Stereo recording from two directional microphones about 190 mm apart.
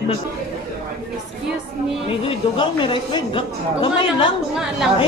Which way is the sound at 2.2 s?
25° left (ahead or behind).